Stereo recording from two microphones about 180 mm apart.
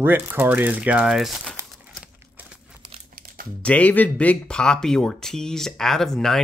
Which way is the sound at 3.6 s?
5° left (ahead or behind).